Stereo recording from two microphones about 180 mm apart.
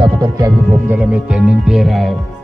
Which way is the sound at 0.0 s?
20° right (ahead or behind).